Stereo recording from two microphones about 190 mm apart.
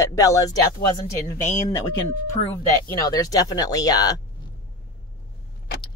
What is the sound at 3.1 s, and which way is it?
Speech, 20° left (ahead or behind).